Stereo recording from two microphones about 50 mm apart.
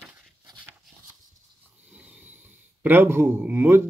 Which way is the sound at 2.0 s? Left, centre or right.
Right.